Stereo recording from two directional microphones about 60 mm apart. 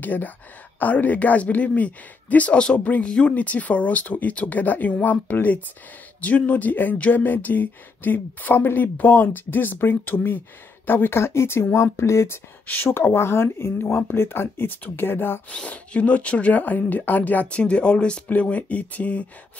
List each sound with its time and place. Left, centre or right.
0.0 s speech: left
12.6 s speech: left
15.7 s speech: left